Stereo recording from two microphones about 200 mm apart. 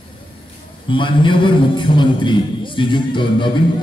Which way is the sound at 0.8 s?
25° left (ahead or behind).